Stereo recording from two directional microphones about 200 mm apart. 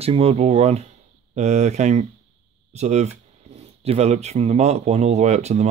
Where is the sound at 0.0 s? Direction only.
30° right (ahead or behind).